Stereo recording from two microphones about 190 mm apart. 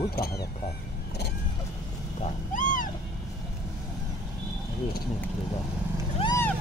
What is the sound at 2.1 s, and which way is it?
Cat, 40° left (ahead or behind).